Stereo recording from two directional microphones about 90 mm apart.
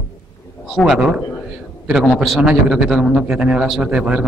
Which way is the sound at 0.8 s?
5° right (ahead or behind).